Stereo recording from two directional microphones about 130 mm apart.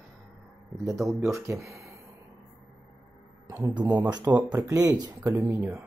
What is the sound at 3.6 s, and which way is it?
Speech, 30° right (ahead or behind).